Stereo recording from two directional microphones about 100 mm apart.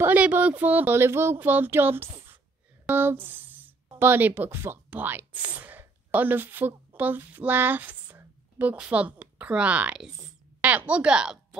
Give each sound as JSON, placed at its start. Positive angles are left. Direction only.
{"t": 0.0, "sound": "speech", "side_deg": -15}